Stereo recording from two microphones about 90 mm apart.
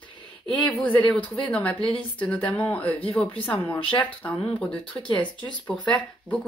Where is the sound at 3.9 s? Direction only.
65° left (ahead or behind).